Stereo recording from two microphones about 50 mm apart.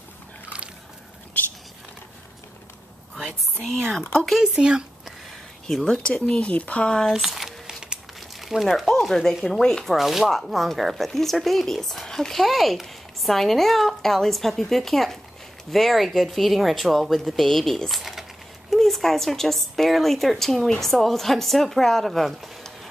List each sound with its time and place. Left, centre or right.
3.2 s whispering: centre
4.4 s speech: centre
5.7 s speech: centre
6.0 s speech: centre
7.1 s squish: centre
8.4 s a sound: centre
8.6 s speech: centre
9.9 s a woman's voice: centre